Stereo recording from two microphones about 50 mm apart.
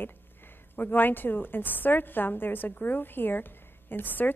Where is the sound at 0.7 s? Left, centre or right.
Left.